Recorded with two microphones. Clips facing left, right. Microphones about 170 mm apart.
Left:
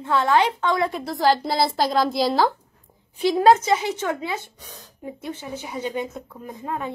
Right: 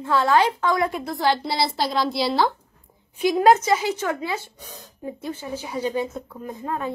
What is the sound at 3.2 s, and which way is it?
A woman's voice, 25° left (ahead or behind).